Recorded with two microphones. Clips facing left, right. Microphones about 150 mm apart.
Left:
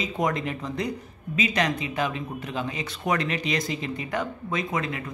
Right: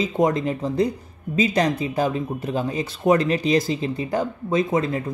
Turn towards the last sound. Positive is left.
turn(degrees=-35)  # may be behind; listen again after turning